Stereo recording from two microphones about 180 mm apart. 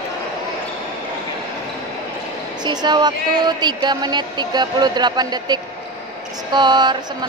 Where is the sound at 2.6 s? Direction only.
25° right (ahead or behind).